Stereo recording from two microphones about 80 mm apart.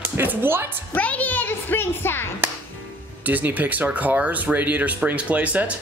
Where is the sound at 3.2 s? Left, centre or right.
Right.